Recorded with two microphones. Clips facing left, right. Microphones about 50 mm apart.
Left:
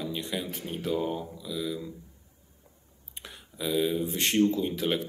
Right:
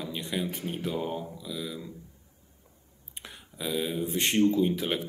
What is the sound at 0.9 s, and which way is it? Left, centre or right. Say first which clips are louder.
Speech: left 2 dB; centre.